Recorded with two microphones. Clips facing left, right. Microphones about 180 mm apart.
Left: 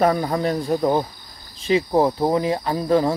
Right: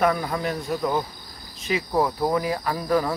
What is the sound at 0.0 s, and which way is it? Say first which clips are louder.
Speech: left 4 dB; 35° left (ahead or behind).